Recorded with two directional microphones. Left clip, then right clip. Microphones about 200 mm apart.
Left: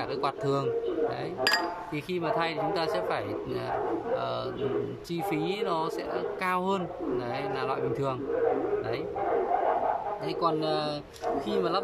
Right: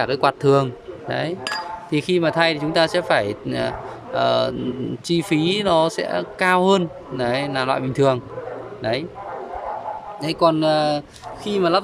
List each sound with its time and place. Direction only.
0.0 s speech: 40° right (ahead or behind)
1.9 s speech: 50° right (ahead or behind)
10.2 s speech: 55° right (ahead or behind)